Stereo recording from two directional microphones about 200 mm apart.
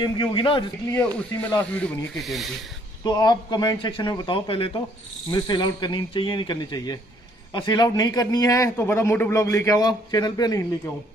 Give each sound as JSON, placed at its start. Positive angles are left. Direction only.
{"t": 0.0, "sound": "a man's voice", "side_deg": 25}
{"t": 3.0, "sound": "a man's voice", "side_deg": 20}